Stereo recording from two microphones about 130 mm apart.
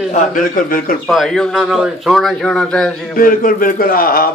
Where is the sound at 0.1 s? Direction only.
90° left.